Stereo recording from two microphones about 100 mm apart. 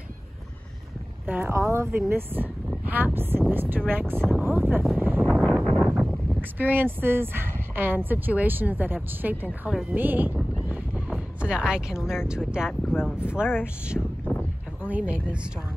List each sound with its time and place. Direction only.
1.2 s speech: 20° right (ahead or behind)
4.9 s wind noise: 20° right (ahead or behind)
5.3 s a sound: centre (ahead or behind)
6.6 s speech: 20° right (ahead or behind)
9.7 s speech: 5° right (ahead or behind)
9.9 s speech: 20° right (ahead or behind)
10.7 s a sound: 10° right (ahead or behind)
12.5 s speech: 5° right (ahead or behind)
14.0 s wind: 5° left (ahead or behind)
14.8 s speech: 15° right (ahead or behind)